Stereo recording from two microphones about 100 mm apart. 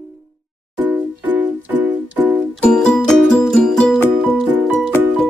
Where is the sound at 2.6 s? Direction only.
10° left (ahead or behind).